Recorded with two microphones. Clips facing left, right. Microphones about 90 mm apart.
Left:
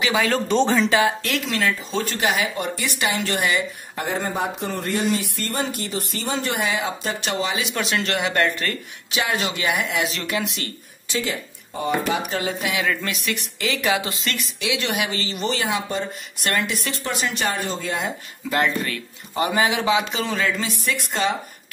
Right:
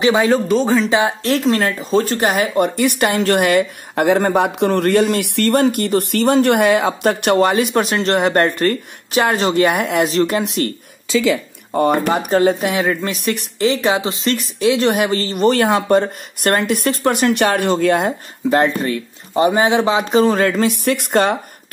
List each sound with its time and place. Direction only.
0.0 s speech: 25° right (ahead or behind)
0.5 s speech: 5° right (ahead or behind)
0.8 s speech: 20° right (ahead or behind)
1.2 s speech: 40° right (ahead or behind)
11.7 s speech: 60° right (ahead or behind)
12.8 s speech: 25° right (ahead or behind)
13.1 s speech: 40° right (ahead or behind)
14.6 s speech: 40° right (ahead or behind); by 18.1 s 60° right (ahead or behind)
18.4 s speech: 30° right (ahead or behind); by 21.4 s 55° right (ahead or behind)